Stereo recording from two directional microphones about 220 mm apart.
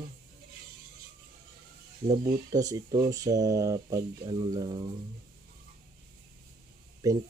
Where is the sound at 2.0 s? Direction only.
15° right (ahead or behind).